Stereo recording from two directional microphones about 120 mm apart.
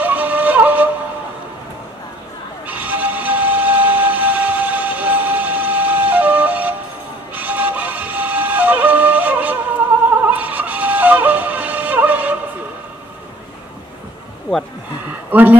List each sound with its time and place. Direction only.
0.0 s wind instrument: 15° right (ahead or behind)
2.6 s train: 15° right (ahead or behind)
7.3 s music: 15° right (ahead or behind)
15.3 s a sound: 15° right (ahead or behind)